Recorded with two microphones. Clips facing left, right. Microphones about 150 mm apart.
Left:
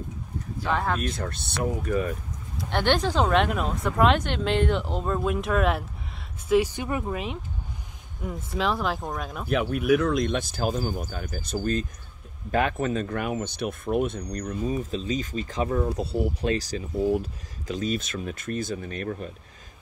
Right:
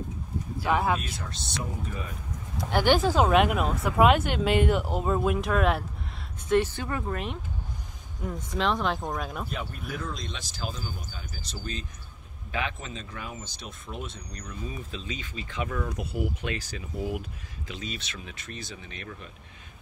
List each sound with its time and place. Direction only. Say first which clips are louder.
0.6 s speech: right 1 dB; 10° right (ahead or behind)
1.0 s speech: left 7 dB; 55° left (ahead or behind)
2.5 s speech: right 1 dB; 5° right (ahead or behind)
6.5 s speech: left 2 dB; 10° left (ahead or behind)
8.2 s speech: left 1 dB; 5° left (ahead or behind)
9.5 s speech: left 14 dB; 75° left (ahead or behind); by 19.3 s 45° left (ahead or behind)